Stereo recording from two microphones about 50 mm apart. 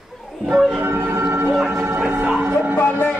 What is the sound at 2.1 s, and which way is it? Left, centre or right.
Speech, right.